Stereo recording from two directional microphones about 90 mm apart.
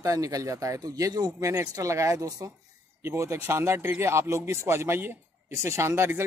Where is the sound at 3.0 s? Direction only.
30° right (ahead or behind).